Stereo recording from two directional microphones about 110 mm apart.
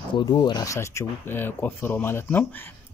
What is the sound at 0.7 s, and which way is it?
A man's voice, 20° left (ahead or behind).